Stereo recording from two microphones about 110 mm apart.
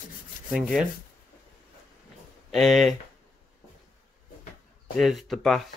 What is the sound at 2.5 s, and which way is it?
Speech, centre (ahead or behind).